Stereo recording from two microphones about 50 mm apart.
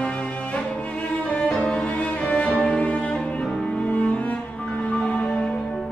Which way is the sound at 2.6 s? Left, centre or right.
Left.